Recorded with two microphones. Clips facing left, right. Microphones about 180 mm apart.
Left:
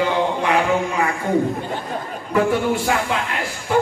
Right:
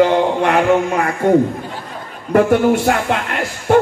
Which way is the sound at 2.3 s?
55° right (ahead or behind).